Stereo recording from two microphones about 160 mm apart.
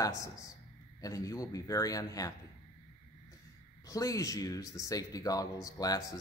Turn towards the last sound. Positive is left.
turn(degrees=25)  # may be behind; listen again after turning